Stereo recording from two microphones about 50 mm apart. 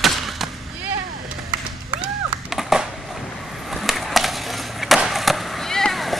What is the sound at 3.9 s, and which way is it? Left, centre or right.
Skateboard, centre.